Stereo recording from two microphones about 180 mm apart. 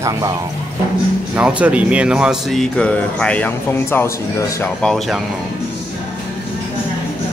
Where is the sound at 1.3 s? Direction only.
5° right (ahead or behind).